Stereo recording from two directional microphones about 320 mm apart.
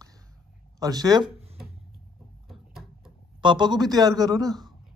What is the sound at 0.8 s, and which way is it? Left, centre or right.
Speech, centre.